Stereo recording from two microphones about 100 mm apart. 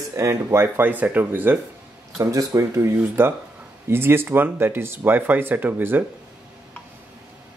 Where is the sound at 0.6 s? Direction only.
15° right (ahead or behind).